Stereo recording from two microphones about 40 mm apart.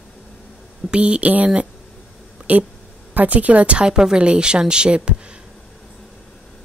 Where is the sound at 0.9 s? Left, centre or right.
Right.